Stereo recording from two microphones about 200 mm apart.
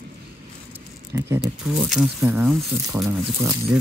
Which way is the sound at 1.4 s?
Centre (ahead or behind).